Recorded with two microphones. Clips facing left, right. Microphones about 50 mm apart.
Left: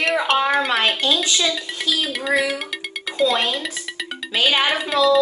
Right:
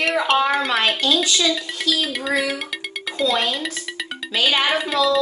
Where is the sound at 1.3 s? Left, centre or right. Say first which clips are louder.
Right 1 dB; centre.